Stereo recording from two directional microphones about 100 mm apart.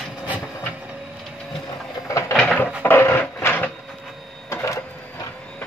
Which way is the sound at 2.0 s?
30° left (ahead or behind).